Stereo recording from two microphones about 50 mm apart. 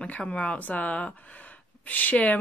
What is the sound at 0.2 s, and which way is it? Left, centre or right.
Speech, left.